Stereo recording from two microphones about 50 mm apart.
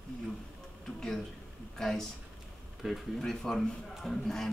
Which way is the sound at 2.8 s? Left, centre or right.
Centre.